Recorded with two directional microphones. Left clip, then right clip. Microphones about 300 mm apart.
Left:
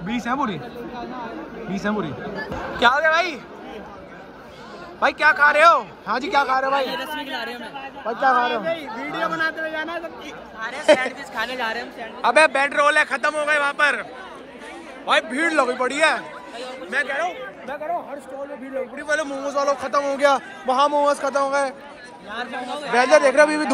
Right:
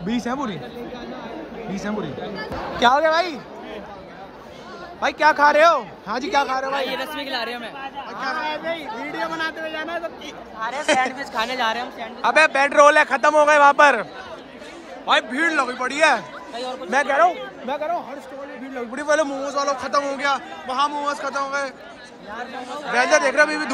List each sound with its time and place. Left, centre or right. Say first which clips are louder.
0.1 s speech: left 2 dB; centre
1.8 s speech: left 3 dB; centre
5.0 s speech: even; centre
6.7 s a man's voice: left 2 dB; centre
11.1 s speech: right 3 dB; right
15.0 s speech: right 1 dB; centre
16.5 s speech: right 3 dB; right
18.9 s a man's voice: right 5 dB; centre
22.3 s speech: left 3 dB; left
22.9 s speech: left 2 dB; centre